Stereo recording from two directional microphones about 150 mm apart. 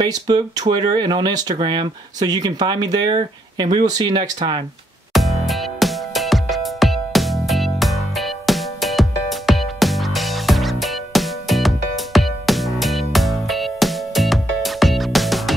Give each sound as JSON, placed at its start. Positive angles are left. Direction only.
{"t": 0.0, "sound": "speech", "side_deg": -25}
{"t": 5.1, "sound": "music", "side_deg": 0}